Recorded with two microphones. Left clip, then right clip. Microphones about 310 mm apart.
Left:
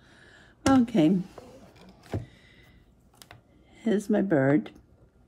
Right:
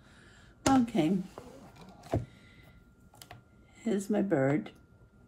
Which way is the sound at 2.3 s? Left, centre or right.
Left.